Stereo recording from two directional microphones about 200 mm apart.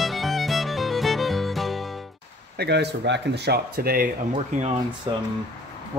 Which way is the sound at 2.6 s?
55° right (ahead or behind).